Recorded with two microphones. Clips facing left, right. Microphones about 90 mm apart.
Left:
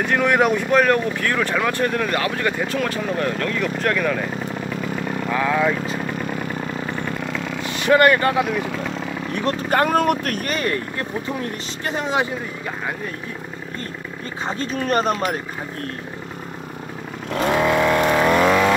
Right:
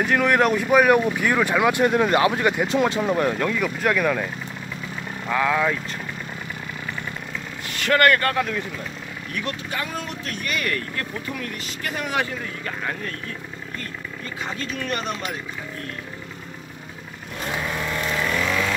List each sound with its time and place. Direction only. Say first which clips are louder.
0.0 s speech: left 1 dB; centre (ahead or behind)
5.3 s speech: left 1 dB; centre (ahead or behind)
7.7 s speech: left 3 dB; 20° left (ahead or behind)
8.5 s speech: left 5 dB; 90° left
9.3 s speech: left 6 dB; 35° left (ahead or behind)
9.7 s speech: left 12 dB; 55° left (ahead or behind); by 12.4 s 20° left (ahead or behind)
14.5 s speech: left 8 dB; 35° left (ahead or behind)
17.3 s vehicle: left 10 dB; 90° left; by 18.8 s 50° left (ahead or behind)